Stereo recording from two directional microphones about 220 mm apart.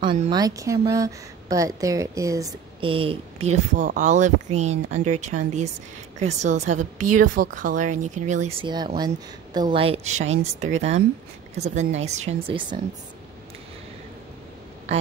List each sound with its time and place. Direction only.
0.0 s a woman's voice: 20° right (ahead or behind)